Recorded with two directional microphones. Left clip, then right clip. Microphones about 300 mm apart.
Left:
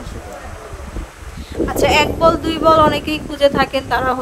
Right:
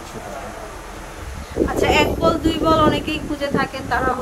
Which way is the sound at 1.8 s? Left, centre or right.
Centre.